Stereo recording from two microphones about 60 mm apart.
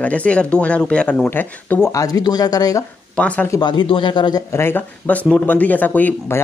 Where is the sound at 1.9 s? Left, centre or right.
Left.